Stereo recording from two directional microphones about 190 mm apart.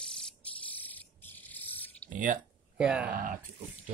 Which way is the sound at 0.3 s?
5° left (ahead or behind).